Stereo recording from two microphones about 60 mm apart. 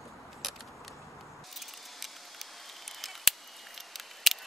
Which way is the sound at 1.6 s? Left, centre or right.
Centre.